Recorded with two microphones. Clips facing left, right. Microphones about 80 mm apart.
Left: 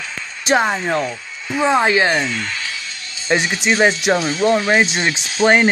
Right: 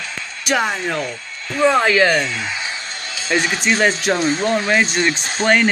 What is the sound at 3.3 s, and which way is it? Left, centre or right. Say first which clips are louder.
Speech: left 2 dB; left.